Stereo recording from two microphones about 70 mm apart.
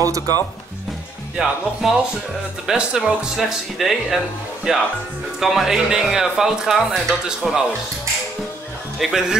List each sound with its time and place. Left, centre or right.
0.0 s speech: right
1.3 s speech: centre
9.0 s speech: centre